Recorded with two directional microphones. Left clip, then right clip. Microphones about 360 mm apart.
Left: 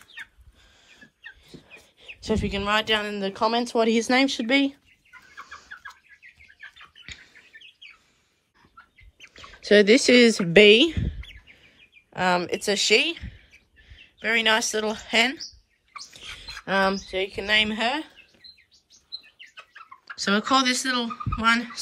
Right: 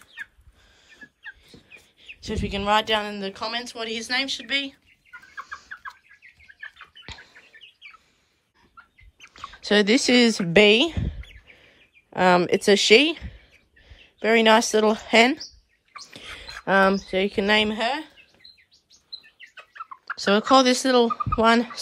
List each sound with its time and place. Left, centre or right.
0.8 s speech: centre
5.2 s chicken: centre
7.5 s bird: right
9.2 s a sound: centre
10.5 s speech: centre
16.6 s speech: right; by 18.2 s centre
19.5 s chicken: centre
20.2 s speech: centre